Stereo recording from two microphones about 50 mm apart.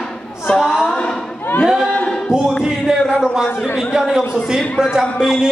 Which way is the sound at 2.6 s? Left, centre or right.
Centre.